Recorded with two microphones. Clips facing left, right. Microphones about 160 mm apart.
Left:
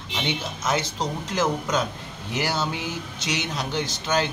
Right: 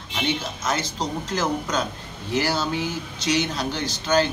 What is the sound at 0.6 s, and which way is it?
A man's voice, 20° left (ahead or behind).